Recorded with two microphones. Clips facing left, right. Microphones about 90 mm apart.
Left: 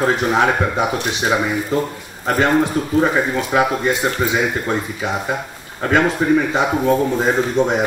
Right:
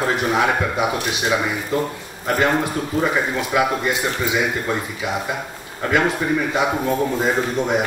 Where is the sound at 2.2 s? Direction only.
30° left (ahead or behind).